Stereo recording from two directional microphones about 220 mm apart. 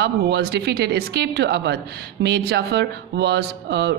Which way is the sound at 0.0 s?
50° right (ahead or behind).